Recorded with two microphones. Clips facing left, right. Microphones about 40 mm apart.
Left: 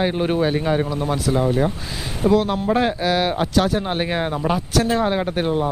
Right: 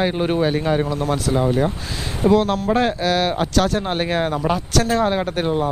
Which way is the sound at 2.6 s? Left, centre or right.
Centre.